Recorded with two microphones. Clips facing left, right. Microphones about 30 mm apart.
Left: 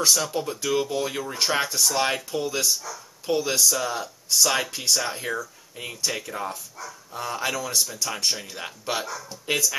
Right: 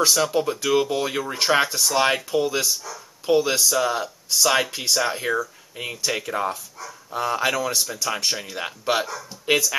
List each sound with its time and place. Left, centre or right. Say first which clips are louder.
0.0 s speech: right 4 dB; centre
9.1 s speech: right 5 dB; centre